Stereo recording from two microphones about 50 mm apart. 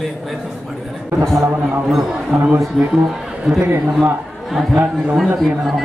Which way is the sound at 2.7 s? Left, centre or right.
Centre.